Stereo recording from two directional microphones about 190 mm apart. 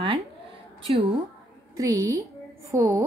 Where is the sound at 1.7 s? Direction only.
15° right (ahead or behind).